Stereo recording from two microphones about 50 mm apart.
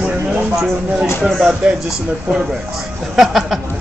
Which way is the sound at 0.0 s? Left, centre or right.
Centre.